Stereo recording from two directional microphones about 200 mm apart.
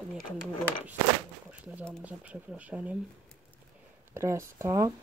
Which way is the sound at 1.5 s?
5° right (ahead or behind).